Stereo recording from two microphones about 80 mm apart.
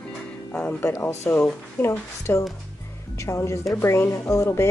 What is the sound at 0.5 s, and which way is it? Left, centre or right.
Speech, centre.